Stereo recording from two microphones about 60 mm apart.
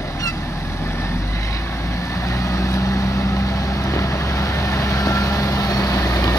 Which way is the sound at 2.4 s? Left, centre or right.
Left.